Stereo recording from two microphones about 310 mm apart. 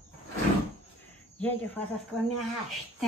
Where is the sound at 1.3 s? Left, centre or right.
Centre.